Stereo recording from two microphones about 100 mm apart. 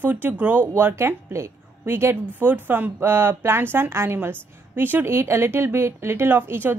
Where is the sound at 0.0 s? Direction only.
20° right (ahead or behind).